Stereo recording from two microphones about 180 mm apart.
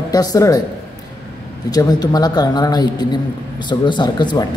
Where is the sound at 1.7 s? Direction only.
20° left (ahead or behind).